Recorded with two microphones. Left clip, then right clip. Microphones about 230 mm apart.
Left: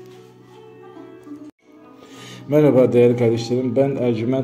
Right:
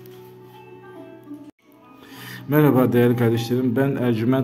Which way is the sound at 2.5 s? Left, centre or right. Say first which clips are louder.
Left 4 dB; centre.